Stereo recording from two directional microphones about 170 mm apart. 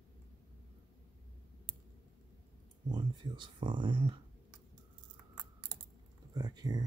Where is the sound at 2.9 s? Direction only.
25° right (ahead or behind).